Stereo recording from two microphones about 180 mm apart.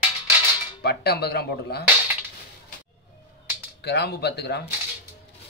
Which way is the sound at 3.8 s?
65° left (ahead or behind).